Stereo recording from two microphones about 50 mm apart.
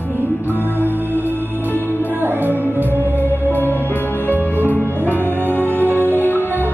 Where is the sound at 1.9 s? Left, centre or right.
Right.